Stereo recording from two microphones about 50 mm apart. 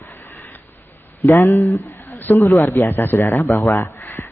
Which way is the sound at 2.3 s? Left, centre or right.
Left.